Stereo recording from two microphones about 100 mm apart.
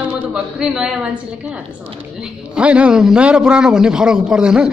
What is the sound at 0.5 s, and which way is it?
Speech, 10° right (ahead or behind).